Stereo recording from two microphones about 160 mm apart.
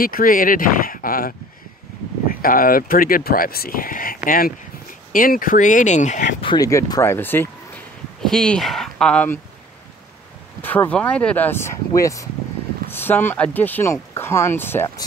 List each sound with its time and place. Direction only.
0.0 s speech: 65° left (ahead or behind)
6.4 s speech: 25° left (ahead or behind); by 9.4 s 10° left (ahead or behind)
10.6 s speech: 10° left (ahead or behind)